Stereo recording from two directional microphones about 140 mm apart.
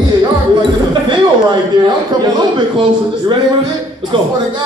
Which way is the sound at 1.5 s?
30° right (ahead or behind).